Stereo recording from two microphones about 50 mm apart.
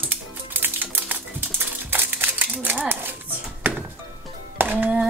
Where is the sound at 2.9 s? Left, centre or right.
Right.